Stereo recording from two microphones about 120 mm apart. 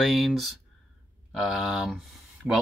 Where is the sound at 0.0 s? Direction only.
Centre (ahead or behind).